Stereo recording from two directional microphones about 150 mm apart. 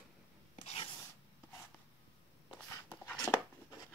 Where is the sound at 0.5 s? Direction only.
45° left (ahead or behind).